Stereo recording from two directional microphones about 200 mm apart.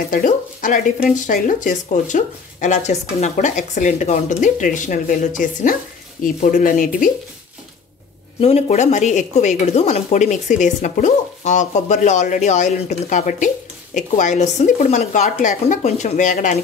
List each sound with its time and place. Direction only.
0.1 s speech: 40° left (ahead or behind)
8.4 s speech: 30° left (ahead or behind)